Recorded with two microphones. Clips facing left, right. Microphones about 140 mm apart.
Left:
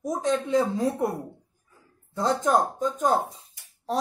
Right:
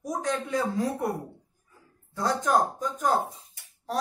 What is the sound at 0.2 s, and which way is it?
Speech, 25° left (ahead or behind).